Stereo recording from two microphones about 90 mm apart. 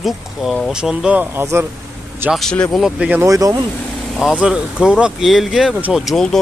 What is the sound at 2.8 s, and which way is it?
Speech, 15° right (ahead or behind).